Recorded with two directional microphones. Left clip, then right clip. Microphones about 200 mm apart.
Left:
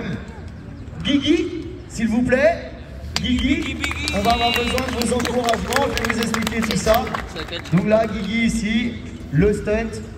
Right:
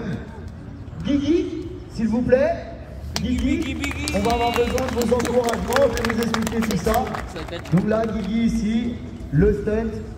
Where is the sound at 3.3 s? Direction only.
60° right (ahead or behind).